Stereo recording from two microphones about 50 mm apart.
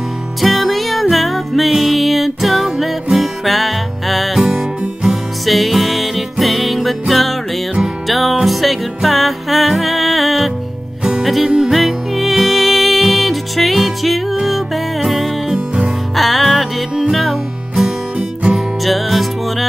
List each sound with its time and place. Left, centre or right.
0.4 s music: centre
4.5 s music: centre
5.4 s music: centre
15.5 s music: centre
16.2 s music: centre
18.9 s music: centre